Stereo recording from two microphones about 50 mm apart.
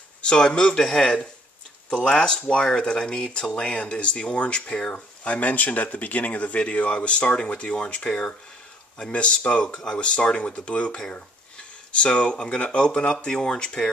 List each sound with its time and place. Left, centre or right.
0.2 s speech: centre
4.9 s speech: left